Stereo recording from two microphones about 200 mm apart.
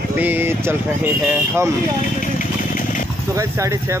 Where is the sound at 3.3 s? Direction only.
15° right (ahead or behind).